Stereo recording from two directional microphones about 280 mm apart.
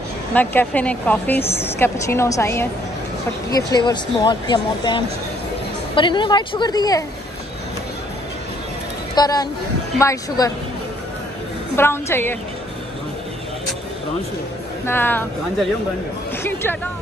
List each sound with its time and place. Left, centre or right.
0.3 s a woman's voice: centre
9.1 s speech: centre
11.7 s speech: centre
14.9 s speech: centre